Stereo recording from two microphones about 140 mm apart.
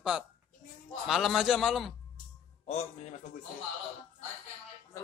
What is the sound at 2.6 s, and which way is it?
Speech, 50° left (ahead or behind).